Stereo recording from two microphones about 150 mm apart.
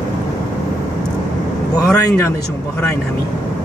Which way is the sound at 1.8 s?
20° left (ahead or behind).